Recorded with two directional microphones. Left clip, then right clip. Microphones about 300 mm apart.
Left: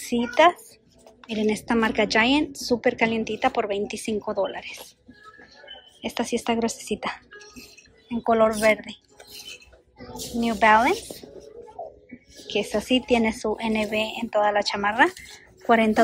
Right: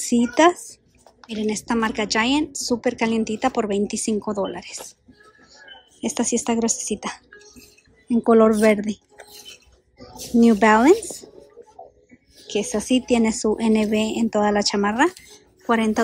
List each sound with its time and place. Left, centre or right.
0.1 s speech: centre
5.9 s a child's voice: centre
12.4 s speech: centre